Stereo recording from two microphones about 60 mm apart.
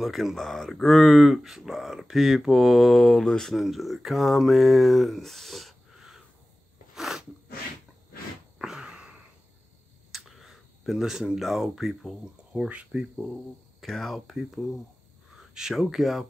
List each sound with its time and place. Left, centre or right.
0.0 s speech: centre
7.0 s sneeze: centre
8.5 s a sound: centre
10.1 s speech: centre
12.5 s speech: right
13.1 s speech: centre
14.3 s speech: centre